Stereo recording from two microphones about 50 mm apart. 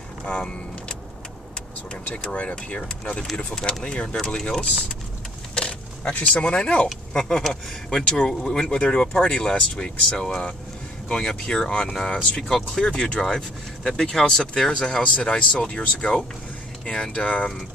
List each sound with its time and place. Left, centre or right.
0.4 s speech: centre
2.3 s speech: left; by 4.9 s centre
5.5 s a sound: centre
6.4 s speech: left
7.2 s speech: centre
12.8 s speech: centre